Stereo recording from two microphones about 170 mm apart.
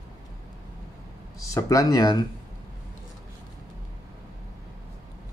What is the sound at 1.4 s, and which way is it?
Speech, 20° left (ahead or behind).